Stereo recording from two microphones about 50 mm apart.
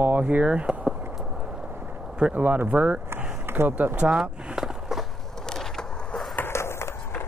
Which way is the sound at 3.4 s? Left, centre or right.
Right.